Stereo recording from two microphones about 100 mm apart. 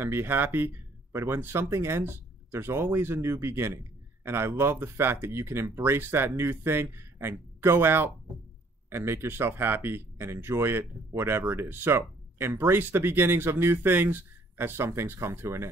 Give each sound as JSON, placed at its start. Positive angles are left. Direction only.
{"t": 0.0, "sound": "speech", "side_deg": -25}